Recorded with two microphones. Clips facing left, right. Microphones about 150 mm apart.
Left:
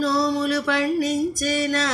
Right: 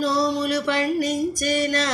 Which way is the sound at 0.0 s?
5° left (ahead or behind).